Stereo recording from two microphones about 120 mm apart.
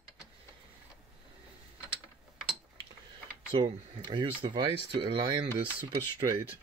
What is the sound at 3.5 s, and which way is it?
Speech, 45° right (ahead or behind).